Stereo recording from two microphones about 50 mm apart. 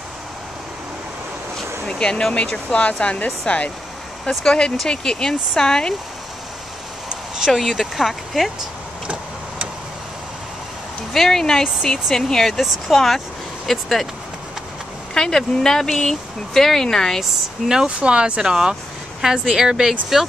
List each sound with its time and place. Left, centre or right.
1.9 s speech: centre
7.1 s speech: centre
9.0 s vehicle: right
11.1 s speech: centre
15.1 s speech: centre
17.2 s speech: centre